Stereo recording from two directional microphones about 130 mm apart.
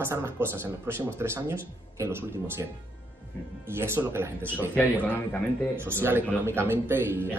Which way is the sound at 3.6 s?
20° right (ahead or behind).